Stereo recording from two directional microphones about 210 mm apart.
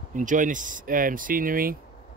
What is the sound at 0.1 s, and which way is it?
Speech, 40° right (ahead or behind).